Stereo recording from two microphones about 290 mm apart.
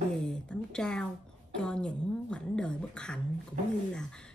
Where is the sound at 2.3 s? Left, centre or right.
Centre.